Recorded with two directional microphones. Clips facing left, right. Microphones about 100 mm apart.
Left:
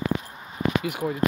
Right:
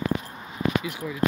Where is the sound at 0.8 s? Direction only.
55° left (ahead or behind).